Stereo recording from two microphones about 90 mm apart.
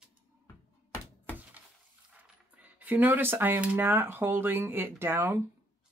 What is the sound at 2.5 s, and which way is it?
Speech, 15° right (ahead or behind).